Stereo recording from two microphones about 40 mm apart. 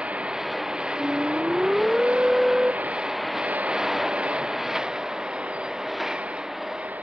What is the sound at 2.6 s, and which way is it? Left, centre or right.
Vehicle, right.